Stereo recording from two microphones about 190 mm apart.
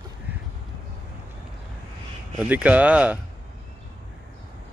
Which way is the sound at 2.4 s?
5° right (ahead or behind).